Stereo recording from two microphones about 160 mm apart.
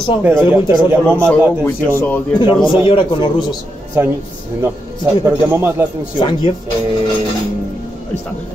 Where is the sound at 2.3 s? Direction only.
30° left (ahead or behind).